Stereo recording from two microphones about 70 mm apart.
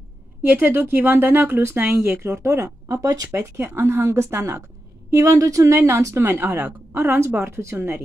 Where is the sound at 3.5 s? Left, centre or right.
Right.